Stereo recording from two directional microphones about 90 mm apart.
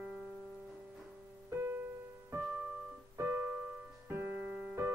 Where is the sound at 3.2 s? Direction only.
25° right (ahead or behind).